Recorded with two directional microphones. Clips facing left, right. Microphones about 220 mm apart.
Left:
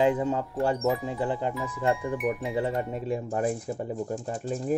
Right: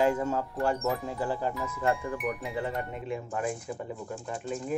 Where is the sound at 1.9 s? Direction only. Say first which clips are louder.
Left 3 dB; centre (ahead or behind).